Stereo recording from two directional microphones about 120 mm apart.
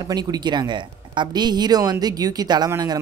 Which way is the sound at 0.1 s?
35° right (ahead or behind).